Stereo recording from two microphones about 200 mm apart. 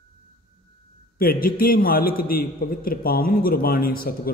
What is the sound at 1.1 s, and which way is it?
A man's voice, 45° left (ahead or behind).